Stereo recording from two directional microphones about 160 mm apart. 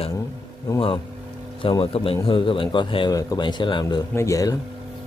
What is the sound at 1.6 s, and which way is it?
A man's voice, 35° left (ahead or behind).